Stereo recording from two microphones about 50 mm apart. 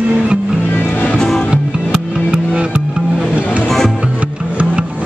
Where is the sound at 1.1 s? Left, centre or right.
Centre.